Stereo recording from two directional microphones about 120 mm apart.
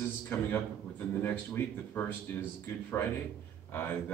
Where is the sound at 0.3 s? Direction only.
20° left (ahead or behind).